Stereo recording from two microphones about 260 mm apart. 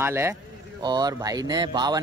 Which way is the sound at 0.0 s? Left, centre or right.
Centre.